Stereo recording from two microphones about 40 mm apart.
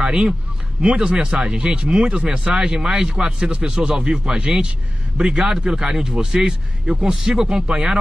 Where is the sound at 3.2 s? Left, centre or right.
Right.